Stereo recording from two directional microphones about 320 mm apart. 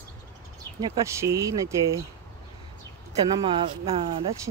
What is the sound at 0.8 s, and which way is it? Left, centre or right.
Speech, centre.